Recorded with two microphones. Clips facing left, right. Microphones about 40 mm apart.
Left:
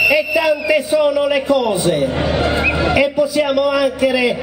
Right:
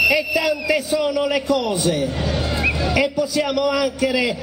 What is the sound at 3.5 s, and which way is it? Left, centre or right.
Speech, centre.